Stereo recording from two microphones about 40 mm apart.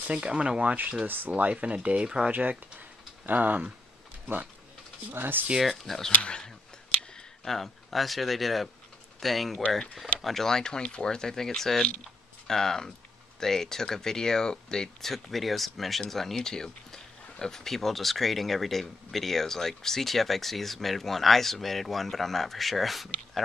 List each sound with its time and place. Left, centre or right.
0.1 s speech: right
1.0 s speech: right
1.3 s speech: right
2.0 s speech: right
2.8 s tick-tock: right
5.1 s speech: right
5.6 s speech: centre
6.2 s speech: left
7.4 s speech: centre